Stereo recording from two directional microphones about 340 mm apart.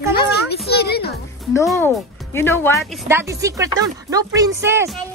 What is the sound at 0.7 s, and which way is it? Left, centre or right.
Speech, left.